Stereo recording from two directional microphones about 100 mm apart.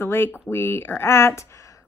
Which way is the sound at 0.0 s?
25° left (ahead or behind).